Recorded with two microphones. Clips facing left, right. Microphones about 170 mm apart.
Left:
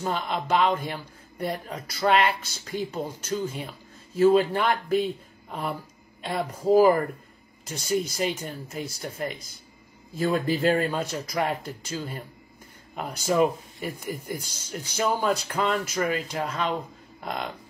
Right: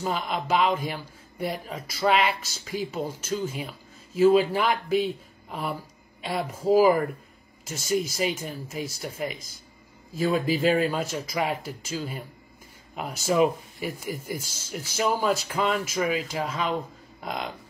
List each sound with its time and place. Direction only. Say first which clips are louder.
0.0 s a man's voice: even; centre (ahead or behind)